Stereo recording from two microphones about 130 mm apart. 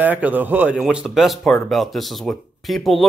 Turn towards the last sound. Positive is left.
turn(degrees=0)  # may be behind; listen again after turning